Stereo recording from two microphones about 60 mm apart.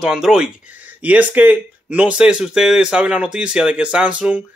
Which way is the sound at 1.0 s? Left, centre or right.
Right.